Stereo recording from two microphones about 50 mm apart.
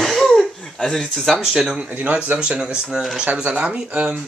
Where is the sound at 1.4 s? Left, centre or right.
Centre.